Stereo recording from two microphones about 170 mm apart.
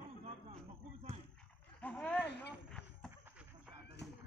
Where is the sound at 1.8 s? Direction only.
5° left (ahead or behind).